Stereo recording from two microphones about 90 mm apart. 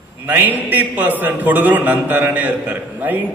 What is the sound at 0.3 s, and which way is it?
A man's voice, 20° right (ahead or behind).